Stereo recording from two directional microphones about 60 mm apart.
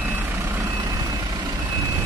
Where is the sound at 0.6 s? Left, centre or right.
Right.